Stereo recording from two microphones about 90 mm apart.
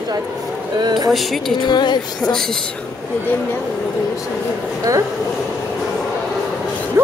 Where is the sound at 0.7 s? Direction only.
50° right (ahead or behind).